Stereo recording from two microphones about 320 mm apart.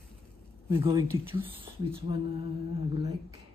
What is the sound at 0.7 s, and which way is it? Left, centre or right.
Speech, centre.